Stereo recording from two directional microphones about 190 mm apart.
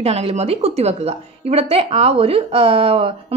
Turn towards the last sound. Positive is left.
turn(degrees=-30)  # may be behind; listen again after turning